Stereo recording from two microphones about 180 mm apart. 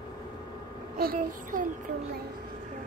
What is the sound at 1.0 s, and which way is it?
Child singing, 50° right (ahead or behind).